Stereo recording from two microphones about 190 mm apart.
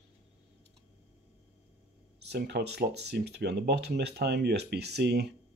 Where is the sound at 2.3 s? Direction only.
60° right (ahead or behind).